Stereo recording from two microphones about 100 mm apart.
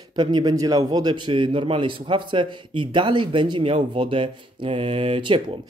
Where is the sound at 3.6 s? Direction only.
65° right (ahead or behind).